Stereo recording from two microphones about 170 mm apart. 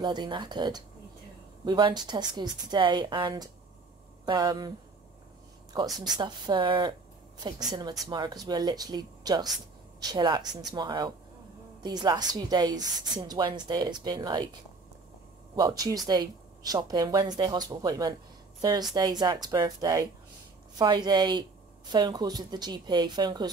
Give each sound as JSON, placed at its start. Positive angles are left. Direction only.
{"t": 0.0, "sound": "a woman's voice", "side_deg": -25}
{"t": 6.0, "sound": "a woman's voice", "side_deg": -25}
{"t": 15.5, "sound": "a woman's voice", "side_deg": -25}